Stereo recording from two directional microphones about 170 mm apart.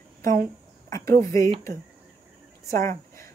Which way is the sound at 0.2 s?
55° right (ahead or behind).